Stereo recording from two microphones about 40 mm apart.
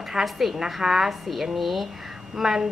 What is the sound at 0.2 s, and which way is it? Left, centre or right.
A woman's voice, centre.